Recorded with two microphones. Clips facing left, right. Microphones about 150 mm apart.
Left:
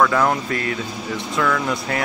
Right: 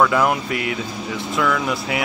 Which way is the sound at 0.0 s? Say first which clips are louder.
Even; 10° right (ahead or behind).